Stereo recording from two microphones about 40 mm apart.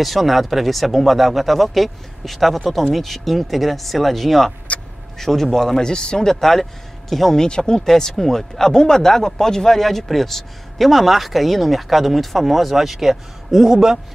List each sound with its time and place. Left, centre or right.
0.0 s speech: centre
5.8 s speech: left; by 7.3 s centre
7.3 s speech: centre
7.8 s speech: centre